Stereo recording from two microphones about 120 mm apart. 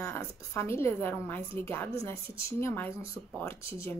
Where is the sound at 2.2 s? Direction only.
50° right (ahead or behind).